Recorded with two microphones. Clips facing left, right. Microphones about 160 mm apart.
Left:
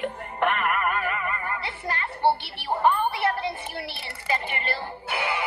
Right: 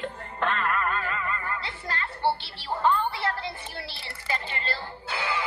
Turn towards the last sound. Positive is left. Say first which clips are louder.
# left 2 dB
turn(degrees=15)  # may be behind; listen again after turning